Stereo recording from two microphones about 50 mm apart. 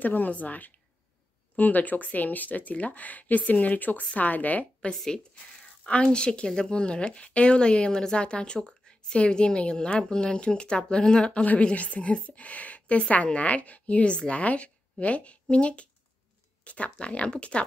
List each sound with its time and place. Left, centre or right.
0.0 s speech: left
4.9 s speech: centre
5.9 s speech: left
11.4 s speech: left